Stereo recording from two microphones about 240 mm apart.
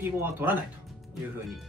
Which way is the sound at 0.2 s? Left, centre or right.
Centre.